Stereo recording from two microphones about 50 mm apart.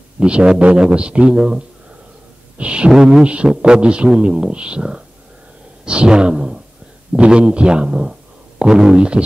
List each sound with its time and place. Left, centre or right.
0.2 s a man's voice: centre
2.9 s a man's voice: centre
5.9 s a sound: centre
7.2 s a man's voice: right